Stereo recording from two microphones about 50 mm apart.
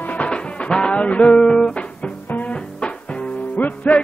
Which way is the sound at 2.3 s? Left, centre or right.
Left.